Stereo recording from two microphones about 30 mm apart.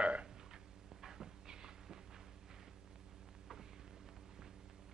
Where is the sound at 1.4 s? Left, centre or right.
Right.